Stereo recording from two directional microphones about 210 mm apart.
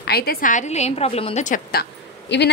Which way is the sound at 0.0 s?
50° left (ahead or behind).